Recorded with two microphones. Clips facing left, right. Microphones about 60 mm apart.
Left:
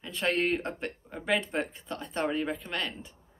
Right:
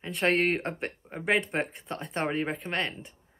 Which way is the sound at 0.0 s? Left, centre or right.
Right.